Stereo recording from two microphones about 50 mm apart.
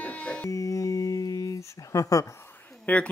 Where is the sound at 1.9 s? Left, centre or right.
Left.